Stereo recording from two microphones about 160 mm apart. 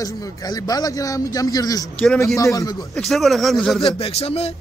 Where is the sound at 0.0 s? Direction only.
20° left (ahead or behind).